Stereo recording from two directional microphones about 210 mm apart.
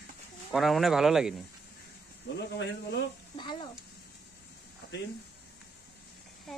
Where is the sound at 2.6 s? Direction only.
50° left (ahead or behind).